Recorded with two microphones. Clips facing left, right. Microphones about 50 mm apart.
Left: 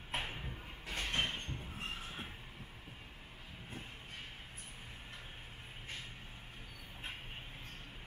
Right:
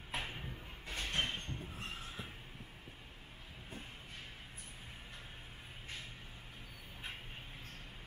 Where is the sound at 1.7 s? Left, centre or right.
Left.